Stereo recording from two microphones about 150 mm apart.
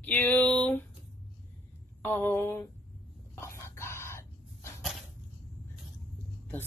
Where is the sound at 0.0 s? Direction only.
10° left (ahead or behind).